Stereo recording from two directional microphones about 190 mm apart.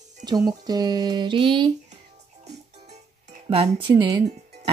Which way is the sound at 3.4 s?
25° right (ahead or behind).